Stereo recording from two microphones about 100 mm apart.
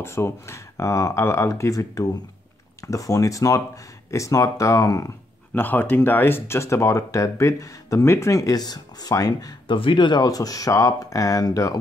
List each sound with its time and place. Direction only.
0.0 s speech: 25° left (ahead or behind)
5.5 s speech: 20° left (ahead or behind); by 9.8 s 40° left (ahead or behind)
9.8 s speech: 55° left (ahead or behind)
10.2 s speech: 40° left (ahead or behind)